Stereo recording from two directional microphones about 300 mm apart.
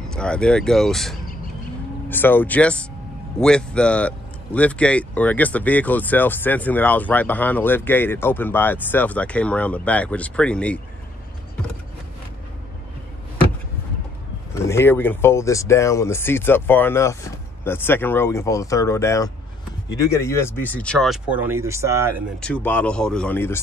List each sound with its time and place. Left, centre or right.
0.1 s speech: centre
14.5 s speech: centre
22.4 s speech: centre